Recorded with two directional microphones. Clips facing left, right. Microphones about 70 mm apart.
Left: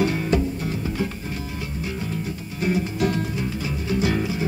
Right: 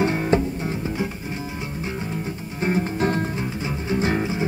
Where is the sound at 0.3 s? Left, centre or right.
Right.